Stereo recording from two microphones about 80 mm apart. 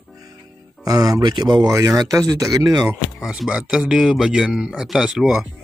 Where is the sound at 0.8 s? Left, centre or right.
Right.